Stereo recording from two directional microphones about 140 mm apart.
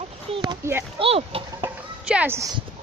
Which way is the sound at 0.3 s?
30° right (ahead or behind).